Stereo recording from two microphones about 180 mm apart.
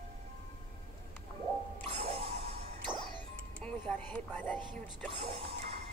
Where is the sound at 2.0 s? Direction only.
35° right (ahead or behind).